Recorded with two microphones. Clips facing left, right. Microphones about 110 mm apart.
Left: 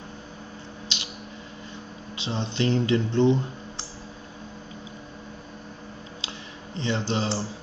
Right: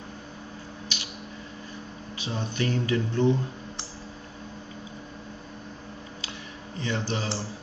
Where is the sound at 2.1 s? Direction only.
25° left (ahead or behind).